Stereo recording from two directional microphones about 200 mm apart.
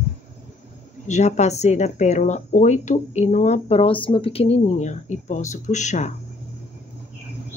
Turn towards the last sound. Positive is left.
turn(degrees=35)  # may be behind; listen again after turning